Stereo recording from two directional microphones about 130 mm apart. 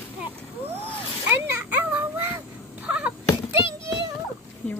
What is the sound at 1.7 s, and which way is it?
Child singing, 15° right (ahead or behind).